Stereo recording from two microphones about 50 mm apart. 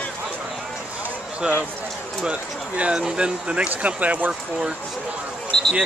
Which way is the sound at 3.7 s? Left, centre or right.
Right.